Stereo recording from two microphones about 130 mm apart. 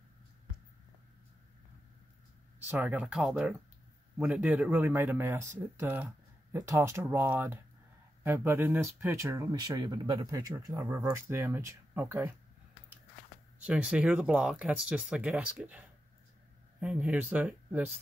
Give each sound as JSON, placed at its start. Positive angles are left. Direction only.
{"t": 2.7, "sound": "speech", "side_deg": -15}
{"t": 13.7, "sound": "speech", "side_deg": -10}
{"t": 16.8, "sound": "speech", "side_deg": -10}